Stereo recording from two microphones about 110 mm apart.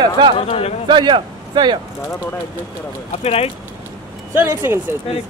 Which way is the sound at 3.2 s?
65° left (ahead or behind).